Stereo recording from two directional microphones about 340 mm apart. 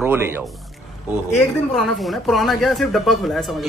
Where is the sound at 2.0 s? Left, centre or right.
Centre.